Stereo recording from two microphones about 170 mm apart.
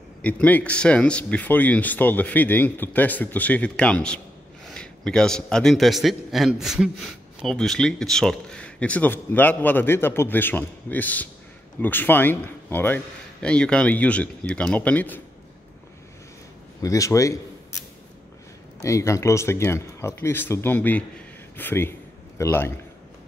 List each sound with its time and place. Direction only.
0.2 s a man's voice: 10° left (ahead or behind)
16.8 s a man's voice: 20° left (ahead or behind)
18.8 s speech: 20° left (ahead or behind)